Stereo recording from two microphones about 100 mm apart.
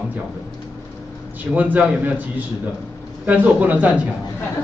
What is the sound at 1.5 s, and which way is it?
A man's voice, 15° right (ahead or behind).